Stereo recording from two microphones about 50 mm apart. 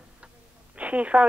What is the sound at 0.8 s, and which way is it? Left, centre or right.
Speech, right.